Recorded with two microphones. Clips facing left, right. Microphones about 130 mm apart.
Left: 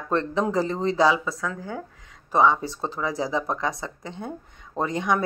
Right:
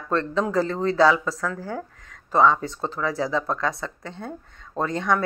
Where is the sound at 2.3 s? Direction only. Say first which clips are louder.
Right 1 dB; 15° left (ahead or behind).